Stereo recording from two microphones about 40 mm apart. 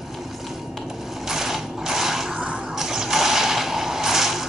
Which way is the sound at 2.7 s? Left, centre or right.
Centre.